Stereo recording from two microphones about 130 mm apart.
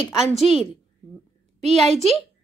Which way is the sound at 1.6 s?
60° right (ahead or behind).